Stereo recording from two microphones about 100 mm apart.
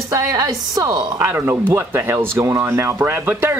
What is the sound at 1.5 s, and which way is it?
Speech, 25° right (ahead or behind).